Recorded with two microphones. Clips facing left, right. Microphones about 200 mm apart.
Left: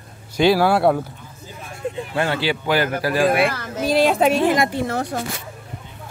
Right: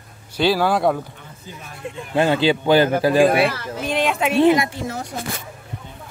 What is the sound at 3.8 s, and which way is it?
Speech, 35° left (ahead or behind).